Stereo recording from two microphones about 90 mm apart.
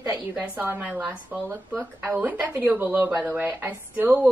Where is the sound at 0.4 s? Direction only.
25° right (ahead or behind).